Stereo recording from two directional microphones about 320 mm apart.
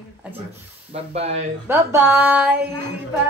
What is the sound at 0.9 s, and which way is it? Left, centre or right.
Speech, centre.